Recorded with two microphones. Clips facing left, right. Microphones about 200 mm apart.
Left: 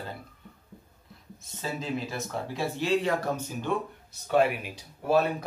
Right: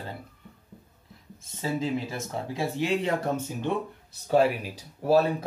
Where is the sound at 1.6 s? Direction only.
20° right (ahead or behind).